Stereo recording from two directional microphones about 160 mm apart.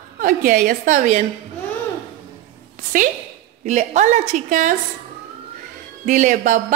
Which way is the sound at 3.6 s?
50° right (ahead or behind).